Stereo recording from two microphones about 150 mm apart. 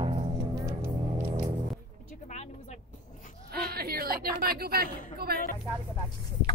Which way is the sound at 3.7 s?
90° right.